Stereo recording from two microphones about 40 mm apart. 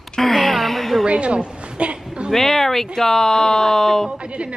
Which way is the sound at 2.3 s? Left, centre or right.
Centre.